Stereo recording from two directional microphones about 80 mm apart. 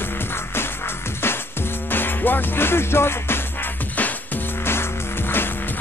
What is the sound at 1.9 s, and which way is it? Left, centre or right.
Music, left.